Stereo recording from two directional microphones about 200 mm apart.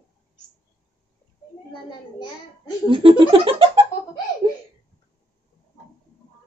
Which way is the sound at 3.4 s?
30° right (ahead or behind).